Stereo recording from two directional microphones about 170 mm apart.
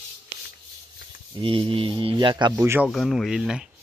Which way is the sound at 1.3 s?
30° right (ahead or behind).